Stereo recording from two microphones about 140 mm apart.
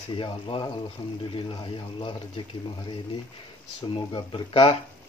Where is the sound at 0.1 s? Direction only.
35° left (ahead or behind).